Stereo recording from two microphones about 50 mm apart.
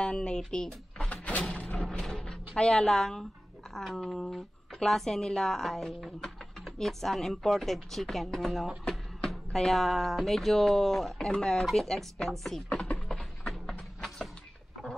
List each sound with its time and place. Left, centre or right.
0.0 s speech: centre
0.4 s drawer open or close: centre
1.8 s speech: centre
13.5 s music: centre